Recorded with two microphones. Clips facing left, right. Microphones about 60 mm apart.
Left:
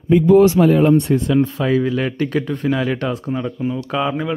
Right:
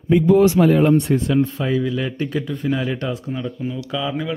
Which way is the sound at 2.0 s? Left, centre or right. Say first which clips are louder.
Left 4 dB; left.